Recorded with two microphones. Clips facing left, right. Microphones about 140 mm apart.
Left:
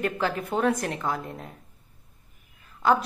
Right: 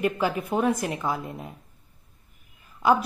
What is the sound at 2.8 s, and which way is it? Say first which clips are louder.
Speech: right 1 dB; 10° right (ahead or behind).